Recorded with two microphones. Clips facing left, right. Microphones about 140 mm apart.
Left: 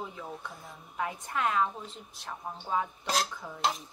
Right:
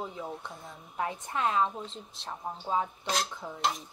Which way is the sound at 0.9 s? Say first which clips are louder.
Right 1 dB; 30° right (ahead or behind).